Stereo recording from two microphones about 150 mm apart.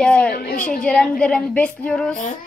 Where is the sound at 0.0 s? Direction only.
10° left (ahead or behind).